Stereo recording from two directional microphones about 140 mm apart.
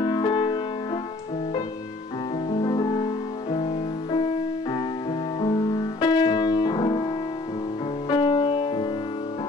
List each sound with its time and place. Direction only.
0.0 s music: 30° left (ahead or behind)
2.5 s music: 35° left (ahead or behind)
5.4 s music: 30° left (ahead or behind)
8.1 s music: 35° left (ahead or behind)